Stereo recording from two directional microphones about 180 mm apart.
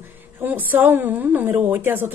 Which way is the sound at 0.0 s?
10° right (ahead or behind).